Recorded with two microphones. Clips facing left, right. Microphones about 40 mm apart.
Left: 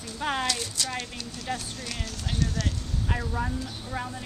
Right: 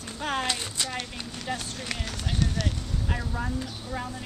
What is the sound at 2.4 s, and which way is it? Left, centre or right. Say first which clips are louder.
Speech: right 1 dB; right.